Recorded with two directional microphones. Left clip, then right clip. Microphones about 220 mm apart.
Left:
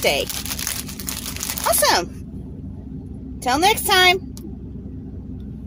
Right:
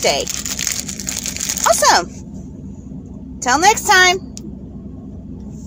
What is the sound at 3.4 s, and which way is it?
Speech, 5° right (ahead or behind).